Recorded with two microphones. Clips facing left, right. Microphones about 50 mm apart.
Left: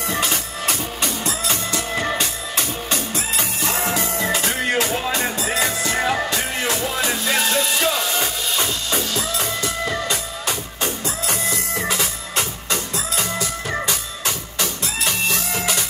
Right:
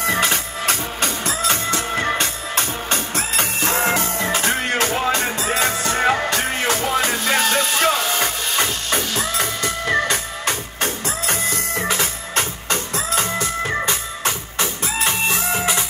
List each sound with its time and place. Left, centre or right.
0.0 s music: right